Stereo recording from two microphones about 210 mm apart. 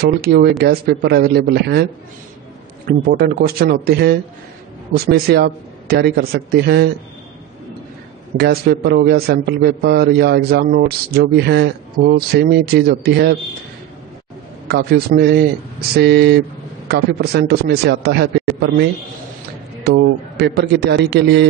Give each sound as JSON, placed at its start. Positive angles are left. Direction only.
{"t": 0.0, "sound": "a man's voice", "side_deg": -45}
{"t": 2.9, "sound": "a man's voice", "side_deg": -45}
{"t": 8.4, "sound": "a man's voice", "side_deg": -50}
{"t": 14.7, "sound": "a man's voice", "side_deg": -50}
{"t": 20.3, "sound": "a man's voice", "side_deg": -50}